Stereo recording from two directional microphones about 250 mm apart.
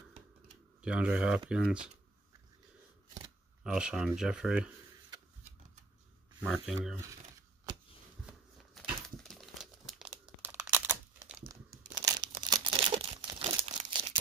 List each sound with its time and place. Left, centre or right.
0.8 s speech: centre
3.2 s speech: centre
6.4 s speech: centre
8.3 s crumpling: centre
11.9 s crumpling: centre